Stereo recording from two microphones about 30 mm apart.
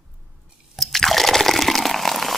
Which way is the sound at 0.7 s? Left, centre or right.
Centre.